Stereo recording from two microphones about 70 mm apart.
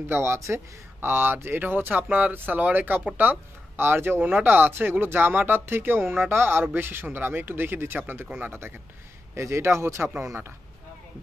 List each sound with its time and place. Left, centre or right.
0.1 s speech: right
9.3 s speech: right